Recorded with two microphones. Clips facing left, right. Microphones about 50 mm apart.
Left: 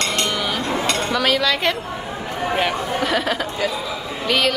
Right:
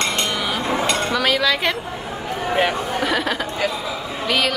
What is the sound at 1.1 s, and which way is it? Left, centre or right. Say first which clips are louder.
Speech: left 1 dB; centre.